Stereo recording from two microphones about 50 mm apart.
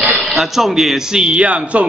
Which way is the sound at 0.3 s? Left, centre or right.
Centre.